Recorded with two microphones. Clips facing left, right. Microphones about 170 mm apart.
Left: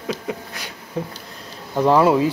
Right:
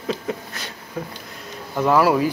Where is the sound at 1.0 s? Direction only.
25° left (ahead or behind).